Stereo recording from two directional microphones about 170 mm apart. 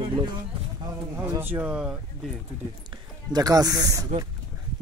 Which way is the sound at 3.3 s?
20° right (ahead or behind).